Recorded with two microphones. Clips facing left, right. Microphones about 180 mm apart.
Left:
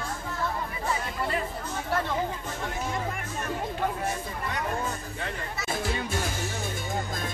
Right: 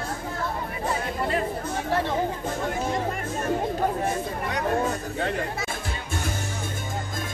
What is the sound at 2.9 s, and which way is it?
Music, 35° right (ahead or behind).